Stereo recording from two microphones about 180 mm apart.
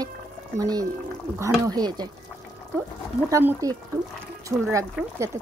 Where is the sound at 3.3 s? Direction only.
20° right (ahead or behind).